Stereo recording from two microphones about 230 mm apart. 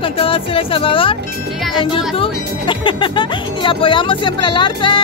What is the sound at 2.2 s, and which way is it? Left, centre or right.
Speech, left.